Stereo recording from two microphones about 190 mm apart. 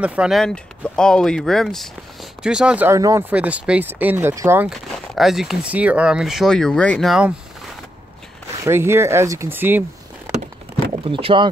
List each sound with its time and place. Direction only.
0.0 s speech: 5° right (ahead or behind)
4.6 s speech: centre (ahead or behind)
8.6 s speech: 15° right (ahead or behind)
11.1 s speech: 30° right (ahead or behind)